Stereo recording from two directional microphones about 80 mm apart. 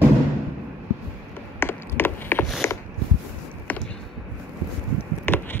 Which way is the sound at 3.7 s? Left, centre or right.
Centre.